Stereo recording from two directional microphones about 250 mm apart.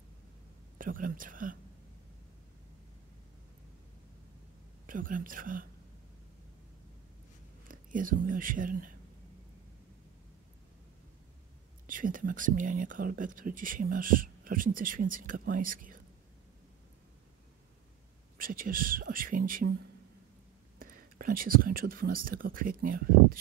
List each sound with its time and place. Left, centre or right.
0.7 s speech: right
4.8 s speech: right
7.6 s speech: right
11.9 s speech: right
18.4 s speech: right
20.8 s speech: right